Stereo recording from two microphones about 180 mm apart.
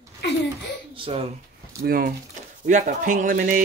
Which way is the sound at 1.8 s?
55° right (ahead or behind).